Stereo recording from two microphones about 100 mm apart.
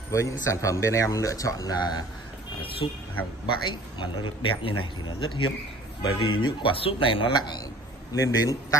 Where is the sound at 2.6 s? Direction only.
65° left (ahead or behind).